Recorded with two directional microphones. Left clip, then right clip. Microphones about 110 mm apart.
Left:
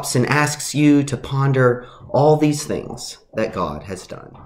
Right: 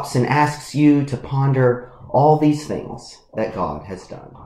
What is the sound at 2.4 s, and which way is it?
Speech, 15° left (ahead or behind).